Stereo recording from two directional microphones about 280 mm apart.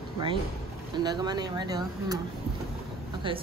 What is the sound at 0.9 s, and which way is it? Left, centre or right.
Speech, centre.